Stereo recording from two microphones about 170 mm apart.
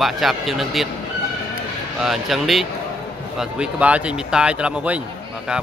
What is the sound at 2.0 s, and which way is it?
Speech, centre (ahead or behind).